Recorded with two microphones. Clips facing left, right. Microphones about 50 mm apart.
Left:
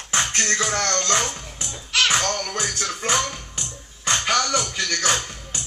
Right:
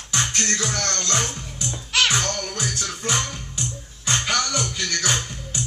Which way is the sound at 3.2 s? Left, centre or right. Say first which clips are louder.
Left 2 dB; left.